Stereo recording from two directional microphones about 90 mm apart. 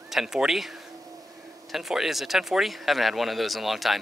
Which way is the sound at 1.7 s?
5° right (ahead or behind).